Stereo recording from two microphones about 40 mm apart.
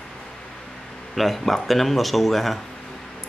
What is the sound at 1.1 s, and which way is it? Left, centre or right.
A man's voice, centre.